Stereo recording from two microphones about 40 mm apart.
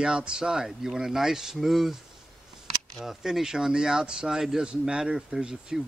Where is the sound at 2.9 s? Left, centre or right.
Centre.